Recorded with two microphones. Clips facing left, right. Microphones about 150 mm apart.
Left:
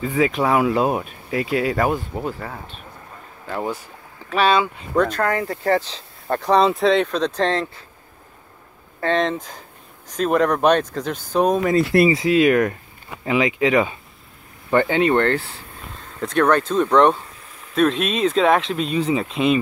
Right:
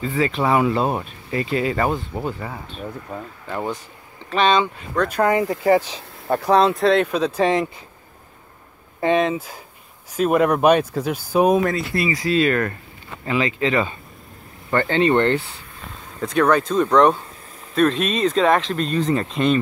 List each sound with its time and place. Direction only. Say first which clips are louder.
0.0 s speech: left 1 dB; 10° left (ahead or behind)
3.1 s speech: right 11 dB; 90° right
3.4 s speech: left 1 dB; 5° left (ahead or behind)
5.1 s speech: right 3 dB; 15° right (ahead or behind)
9.0 s speech: right 2 dB; 10° right (ahead or behind)
11.9 s speech: left 10 dB; 80° left
12.3 s speech: left 3 dB; 15° left (ahead or behind)
15.1 s speech: right 1 dB; centre (ahead or behind)